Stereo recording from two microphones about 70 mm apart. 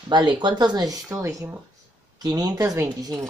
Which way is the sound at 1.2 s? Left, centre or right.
Right.